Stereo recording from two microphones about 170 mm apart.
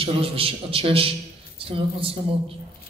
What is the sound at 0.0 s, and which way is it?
A man's voice, 35° right (ahead or behind).